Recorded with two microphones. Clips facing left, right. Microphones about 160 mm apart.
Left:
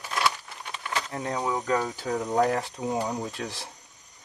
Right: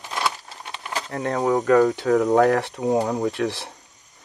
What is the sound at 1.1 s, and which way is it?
Speech, 60° right (ahead or behind).